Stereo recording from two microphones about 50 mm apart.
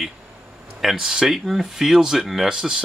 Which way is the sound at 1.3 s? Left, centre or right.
Centre.